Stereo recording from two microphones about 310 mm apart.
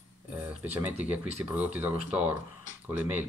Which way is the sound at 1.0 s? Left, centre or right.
Centre.